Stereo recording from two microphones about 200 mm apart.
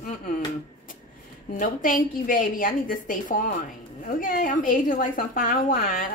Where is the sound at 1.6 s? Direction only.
45° left (ahead or behind).